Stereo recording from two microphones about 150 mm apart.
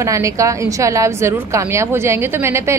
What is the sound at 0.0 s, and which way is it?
A woman's voice, 20° right (ahead or behind).